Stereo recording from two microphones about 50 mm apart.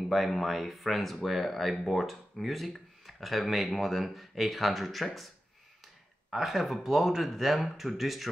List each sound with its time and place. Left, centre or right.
0.1 s speech: centre
6.3 s speech: centre